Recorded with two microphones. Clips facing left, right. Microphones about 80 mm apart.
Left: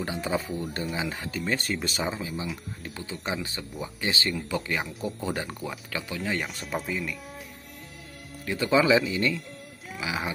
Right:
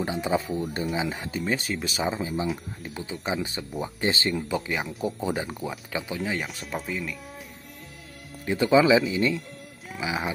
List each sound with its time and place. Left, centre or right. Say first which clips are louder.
0.0 s speech: right 3 dB; centre
1.4 s speech: even; centre
3.1 s speech: right 3 dB; centre
3.8 s speech: right 3 dB; right
4.6 s speech: right 1 dB; centre
5.9 s speech: right 3 dB; centre
6.2 s speech: even; centre
8.5 s speech: right 3 dB; centre
9.9 s speech: right 2 dB; centre